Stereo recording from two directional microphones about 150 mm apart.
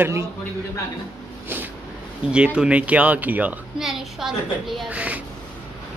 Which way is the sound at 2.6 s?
10° right (ahead or behind).